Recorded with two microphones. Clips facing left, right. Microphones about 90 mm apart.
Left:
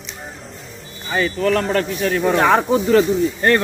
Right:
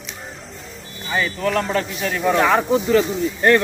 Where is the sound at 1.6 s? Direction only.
50° left (ahead or behind).